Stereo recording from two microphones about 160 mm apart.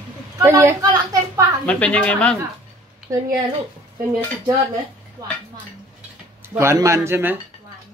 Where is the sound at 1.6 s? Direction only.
10° left (ahead or behind).